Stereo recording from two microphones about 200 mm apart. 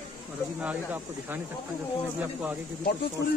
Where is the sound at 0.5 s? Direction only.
10° right (ahead or behind).